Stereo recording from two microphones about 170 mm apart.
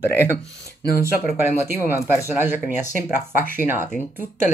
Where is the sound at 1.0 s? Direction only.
10° right (ahead or behind).